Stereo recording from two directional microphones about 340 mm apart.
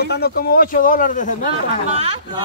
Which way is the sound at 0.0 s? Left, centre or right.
Left.